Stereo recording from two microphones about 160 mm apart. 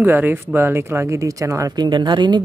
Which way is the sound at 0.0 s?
10° right (ahead or behind).